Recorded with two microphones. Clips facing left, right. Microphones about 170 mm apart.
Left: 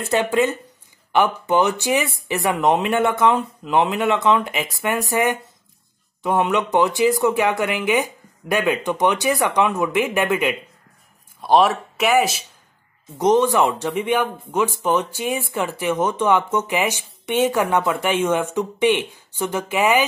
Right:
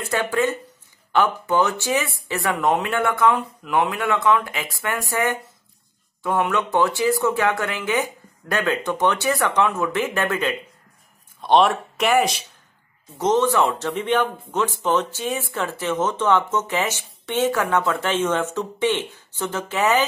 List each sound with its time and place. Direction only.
0.0 s speech: 20° left (ahead or behind)
11.4 s speech: 5° left (ahead or behind)
13.2 s speech: 15° left (ahead or behind)